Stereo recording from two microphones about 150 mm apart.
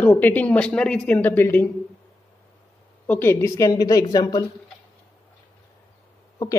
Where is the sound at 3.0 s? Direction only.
15° left (ahead or behind).